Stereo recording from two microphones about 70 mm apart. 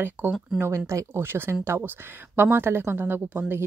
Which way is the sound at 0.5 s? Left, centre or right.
Right.